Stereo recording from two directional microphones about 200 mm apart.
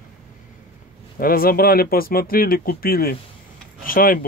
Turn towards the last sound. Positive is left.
turn(degrees=45)  # may be behind; listen again after turning